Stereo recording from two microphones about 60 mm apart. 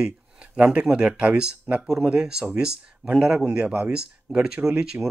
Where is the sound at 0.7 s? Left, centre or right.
Centre.